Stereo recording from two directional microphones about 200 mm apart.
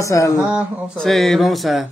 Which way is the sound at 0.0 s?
15° left (ahead or behind).